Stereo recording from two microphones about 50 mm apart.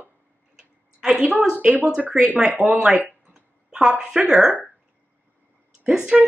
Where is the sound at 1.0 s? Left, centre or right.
Centre.